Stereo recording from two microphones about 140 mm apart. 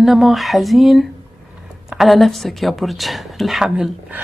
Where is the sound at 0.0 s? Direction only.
Centre (ahead or behind).